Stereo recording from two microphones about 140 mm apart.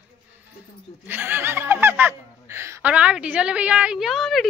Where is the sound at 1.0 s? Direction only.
15° right (ahead or behind).